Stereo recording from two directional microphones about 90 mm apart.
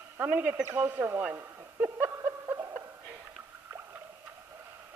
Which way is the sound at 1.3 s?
25° right (ahead or behind).